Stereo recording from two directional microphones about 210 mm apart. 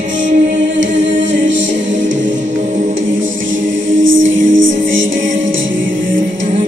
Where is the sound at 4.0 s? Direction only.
65° right (ahead or behind).